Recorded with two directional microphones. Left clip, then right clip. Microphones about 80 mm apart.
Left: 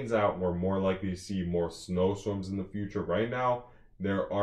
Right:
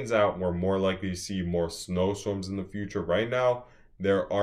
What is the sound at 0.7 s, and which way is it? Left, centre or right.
Speech, right.